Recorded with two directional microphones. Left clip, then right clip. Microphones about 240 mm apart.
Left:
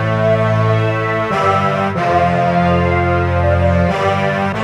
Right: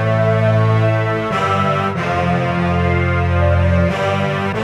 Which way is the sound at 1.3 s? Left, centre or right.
Centre.